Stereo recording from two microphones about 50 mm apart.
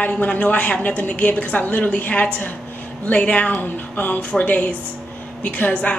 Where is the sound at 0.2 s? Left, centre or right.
Left.